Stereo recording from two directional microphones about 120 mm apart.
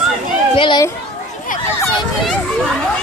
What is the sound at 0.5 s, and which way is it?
Speech, 40° left (ahead or behind).